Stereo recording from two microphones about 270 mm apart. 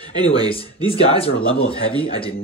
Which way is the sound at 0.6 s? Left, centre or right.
Left.